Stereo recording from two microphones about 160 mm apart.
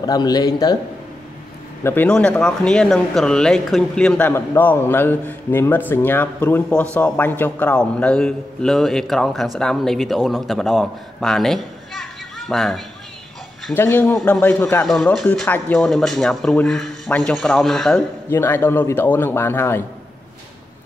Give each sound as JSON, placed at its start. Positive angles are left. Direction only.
{"t": 0.0, "sound": "a man's voice", "side_deg": 25}
{"t": 1.8, "sound": "speech", "side_deg": 15}
{"t": 13.7, "sound": "a man's voice", "side_deg": 15}
{"t": 14.9, "sound": "a man's voice", "side_deg": 0}